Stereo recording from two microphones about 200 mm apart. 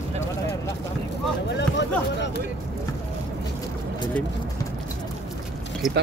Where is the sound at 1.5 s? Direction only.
60° left (ahead or behind).